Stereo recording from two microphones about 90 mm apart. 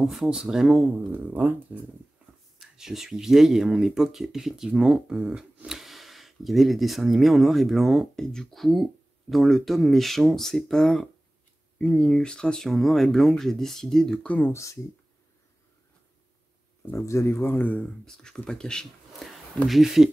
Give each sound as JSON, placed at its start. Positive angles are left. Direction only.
{"t": 0.0, "sound": "speech", "side_deg": -5}
{"t": 1.1, "sound": "speech", "side_deg": -20}
{"t": 2.6, "sound": "speech", "side_deg": -5}
{"t": 14.5, "sound": "speech", "side_deg": 35}
{"t": 16.9, "sound": "speech", "side_deg": 35}
{"t": 18.0, "sound": "speech", "side_deg": 5}